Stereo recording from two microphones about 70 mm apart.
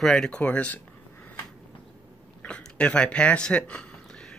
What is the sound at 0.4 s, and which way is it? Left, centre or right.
Speech, left.